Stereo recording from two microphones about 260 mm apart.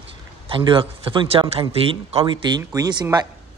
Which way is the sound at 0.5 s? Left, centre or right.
Centre.